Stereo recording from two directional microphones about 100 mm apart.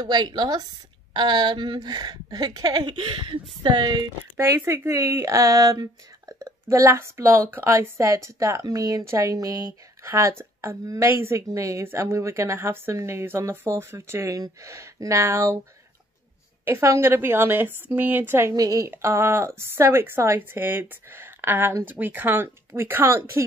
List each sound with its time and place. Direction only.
0.0 s speech: 45° right (ahead or behind)
4.4 s a woman's voice: 25° right (ahead or behind)
16.6 s a woman's voice: 25° right (ahead or behind)
18.5 s speech: 35° right (ahead or behind)
18.9 s a woman's voice: 25° right (ahead or behind)